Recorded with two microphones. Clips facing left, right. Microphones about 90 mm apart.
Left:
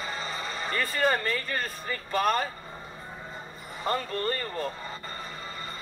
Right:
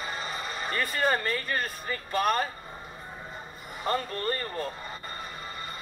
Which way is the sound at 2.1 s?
35° left (ahead or behind).